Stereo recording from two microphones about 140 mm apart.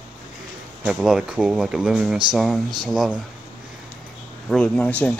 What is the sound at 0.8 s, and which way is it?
Speech, 5° right (ahead or behind).